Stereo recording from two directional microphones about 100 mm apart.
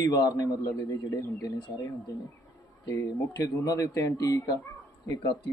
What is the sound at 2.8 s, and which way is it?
Speech, 30° left (ahead or behind).